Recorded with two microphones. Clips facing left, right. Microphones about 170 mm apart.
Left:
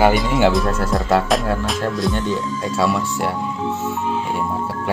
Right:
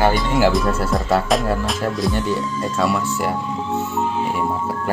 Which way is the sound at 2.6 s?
10° left (ahead or behind).